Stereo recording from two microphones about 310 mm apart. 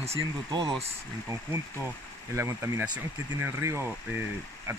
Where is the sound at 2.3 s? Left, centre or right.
Centre.